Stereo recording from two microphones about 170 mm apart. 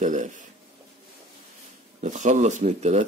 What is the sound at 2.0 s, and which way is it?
Speech, 45° right (ahead or behind).